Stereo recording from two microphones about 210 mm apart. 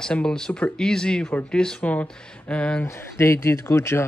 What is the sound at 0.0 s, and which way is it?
Speech, 5° left (ahead or behind).